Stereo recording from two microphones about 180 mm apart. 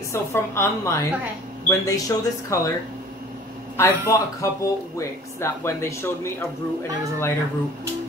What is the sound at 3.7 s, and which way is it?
Speech, 15° left (ahead or behind).